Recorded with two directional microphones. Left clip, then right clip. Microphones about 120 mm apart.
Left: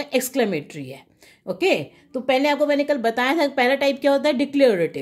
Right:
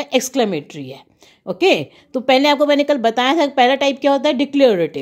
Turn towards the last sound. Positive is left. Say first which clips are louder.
# right 4 dB
turn(degrees=-45)  # may be behind; listen again after turning